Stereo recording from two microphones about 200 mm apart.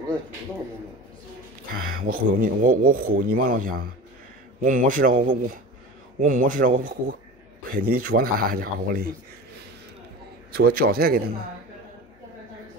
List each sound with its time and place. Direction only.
1.7 s speech: 45° right (ahead or behind)
10.5 s speech: 50° right (ahead or behind)